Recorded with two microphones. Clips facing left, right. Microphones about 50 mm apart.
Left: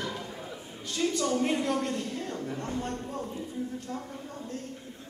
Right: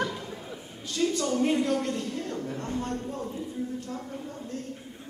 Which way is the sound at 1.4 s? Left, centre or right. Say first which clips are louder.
Right 3 dB; left.